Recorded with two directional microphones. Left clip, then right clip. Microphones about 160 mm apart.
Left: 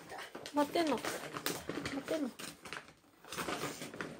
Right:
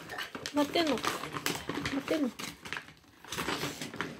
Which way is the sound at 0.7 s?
15° right (ahead or behind).